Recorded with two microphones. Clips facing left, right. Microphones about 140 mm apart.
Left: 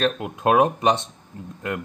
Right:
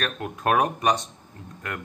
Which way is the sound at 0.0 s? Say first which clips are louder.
Left 5 dB; 20° left (ahead or behind).